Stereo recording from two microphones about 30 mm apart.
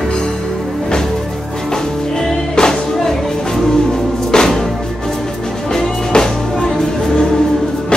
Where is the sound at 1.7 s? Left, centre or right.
Centre.